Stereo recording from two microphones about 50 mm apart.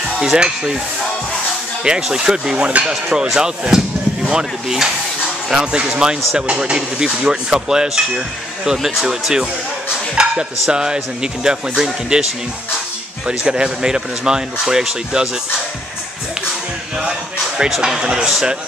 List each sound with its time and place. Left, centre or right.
0.2 s speech: centre
1.9 s speech: centre
10.2 s dishes: centre
10.7 s speech: centre
13.3 s speech: centre
17.6 s speech: centre